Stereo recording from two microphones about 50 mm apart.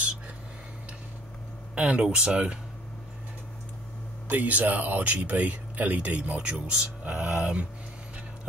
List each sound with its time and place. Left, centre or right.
1.8 s speech: right
4.3 s speech: right
6.7 s speech: right